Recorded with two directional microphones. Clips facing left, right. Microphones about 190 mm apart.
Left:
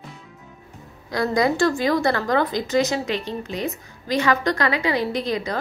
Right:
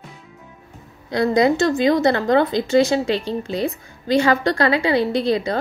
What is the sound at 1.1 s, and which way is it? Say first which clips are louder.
A woman's voice: right 4 dB; 25° right (ahead or behind).